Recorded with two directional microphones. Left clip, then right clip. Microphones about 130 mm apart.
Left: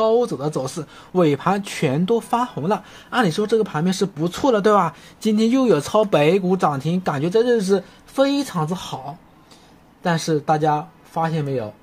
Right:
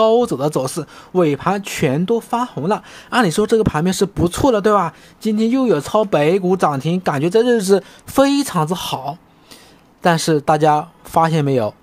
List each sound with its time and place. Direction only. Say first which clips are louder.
0.0 s speech: right 4 dB; 35° right (ahead or behind)
1.1 s speech: right 2 dB; 10° right (ahead or behind); by 4.6 s 30° right (ahead or behind)
4.6 s speech: right 1 dB; 15° right (ahead or behind)
6.4 s speech: right 3 dB; 25° right (ahead or behind)
8.1 s speech: right 4 dB; 45° right (ahead or behind)
11.1 s speech: right 8 dB; 55° right (ahead or behind)